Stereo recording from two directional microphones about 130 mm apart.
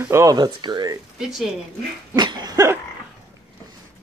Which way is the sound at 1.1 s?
5° right (ahead or behind).